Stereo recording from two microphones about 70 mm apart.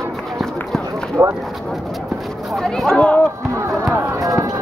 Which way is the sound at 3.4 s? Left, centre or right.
Right.